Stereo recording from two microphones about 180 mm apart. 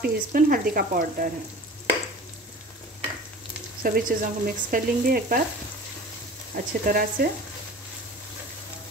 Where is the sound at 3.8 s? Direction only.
50° right (ahead or behind).